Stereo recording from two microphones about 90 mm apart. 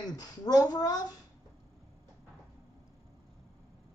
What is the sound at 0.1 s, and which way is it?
Speech, 45° left (ahead or behind).